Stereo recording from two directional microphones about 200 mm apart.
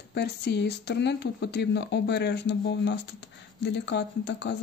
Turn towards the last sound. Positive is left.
turn(degrees=60)  # may be behind; listen again after turning